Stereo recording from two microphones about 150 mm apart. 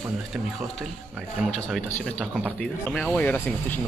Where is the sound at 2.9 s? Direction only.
5° left (ahead or behind).